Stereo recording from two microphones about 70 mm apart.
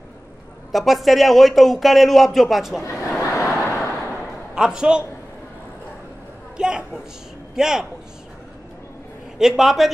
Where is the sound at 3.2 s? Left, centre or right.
Left.